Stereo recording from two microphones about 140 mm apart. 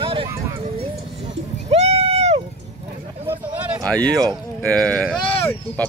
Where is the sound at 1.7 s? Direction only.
50° right (ahead or behind).